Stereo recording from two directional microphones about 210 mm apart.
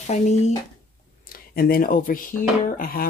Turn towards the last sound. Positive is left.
turn(degrees=45)  # may be behind; listen again after turning